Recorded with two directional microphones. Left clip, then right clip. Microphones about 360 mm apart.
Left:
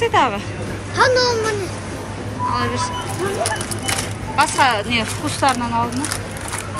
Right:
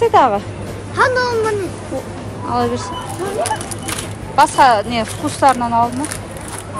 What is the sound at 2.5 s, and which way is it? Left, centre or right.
Speech, centre.